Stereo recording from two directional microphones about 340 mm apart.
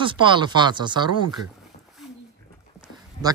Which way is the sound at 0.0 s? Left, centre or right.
Centre.